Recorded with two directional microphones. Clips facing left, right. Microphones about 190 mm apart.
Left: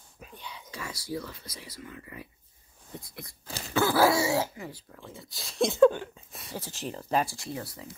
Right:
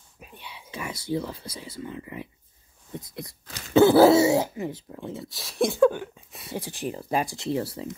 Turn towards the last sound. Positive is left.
turn(degrees=-30)  # may be behind; listen again after turning